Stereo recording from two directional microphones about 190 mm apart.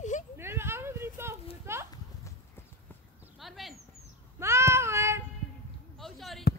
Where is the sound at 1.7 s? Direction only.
15° right (ahead or behind).